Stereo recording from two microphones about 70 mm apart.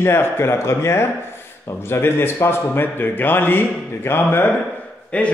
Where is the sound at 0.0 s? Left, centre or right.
Left.